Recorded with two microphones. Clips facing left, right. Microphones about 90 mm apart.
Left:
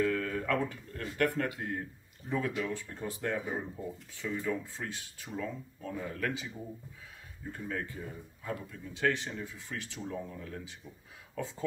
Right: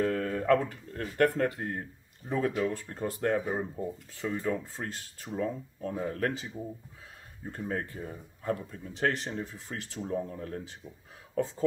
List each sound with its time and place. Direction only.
0.0 s speech: 40° right (ahead or behind)
7.5 s speech: 40° right (ahead or behind)